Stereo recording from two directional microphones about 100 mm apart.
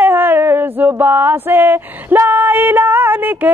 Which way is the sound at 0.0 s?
20° right (ahead or behind).